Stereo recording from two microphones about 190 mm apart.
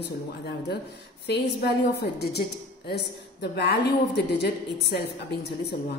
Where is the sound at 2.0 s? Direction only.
60° left (ahead or behind).